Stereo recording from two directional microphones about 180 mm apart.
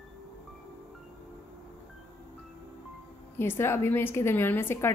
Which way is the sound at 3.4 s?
15° left (ahead or behind).